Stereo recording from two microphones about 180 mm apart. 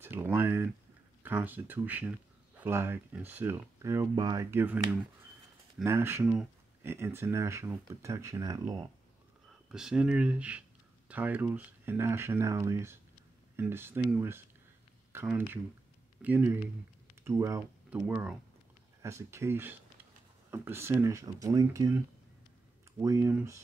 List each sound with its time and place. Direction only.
0.0 s a sound: 10° right (ahead or behind)
1.2 s speech: 10° right (ahead or behind)
5.9 s speech: 15° right (ahead or behind)
9.7 s speech: 5° right (ahead or behind)